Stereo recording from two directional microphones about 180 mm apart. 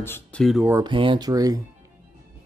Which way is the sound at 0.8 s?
30° right (ahead or behind).